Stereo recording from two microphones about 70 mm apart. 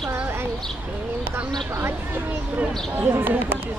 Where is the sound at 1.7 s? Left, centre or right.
Right.